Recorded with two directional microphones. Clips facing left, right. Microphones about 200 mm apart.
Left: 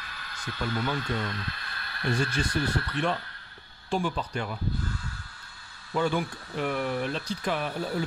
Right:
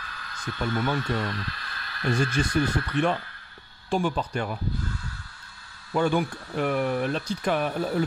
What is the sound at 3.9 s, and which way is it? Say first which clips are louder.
Speech: right 3 dB; 50° right (ahead or behind).